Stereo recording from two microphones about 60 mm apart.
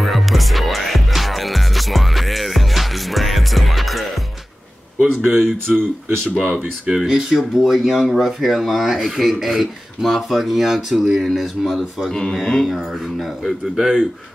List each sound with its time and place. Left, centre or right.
0.0 s music: centre
5.2 s speech: centre
5.7 s speech: right
6.3 s speech: centre
12.1 s speech: centre